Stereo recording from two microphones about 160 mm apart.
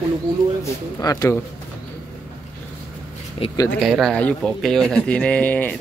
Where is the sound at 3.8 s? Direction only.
Centre (ahead or behind).